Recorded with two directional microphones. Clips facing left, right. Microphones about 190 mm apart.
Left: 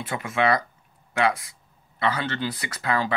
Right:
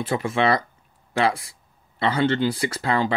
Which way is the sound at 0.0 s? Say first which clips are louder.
Right 3 dB; 30° right (ahead or behind).